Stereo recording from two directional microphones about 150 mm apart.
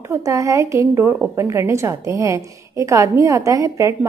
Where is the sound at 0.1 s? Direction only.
20° right (ahead or behind).